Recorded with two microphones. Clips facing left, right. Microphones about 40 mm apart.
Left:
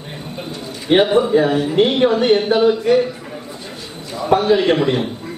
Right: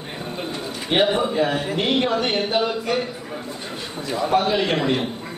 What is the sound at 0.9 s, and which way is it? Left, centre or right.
A man's voice, left.